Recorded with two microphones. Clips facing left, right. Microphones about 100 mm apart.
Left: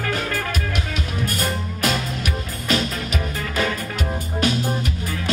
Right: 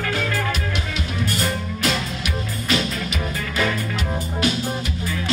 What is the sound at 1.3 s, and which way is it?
Music, 45° left (ahead or behind).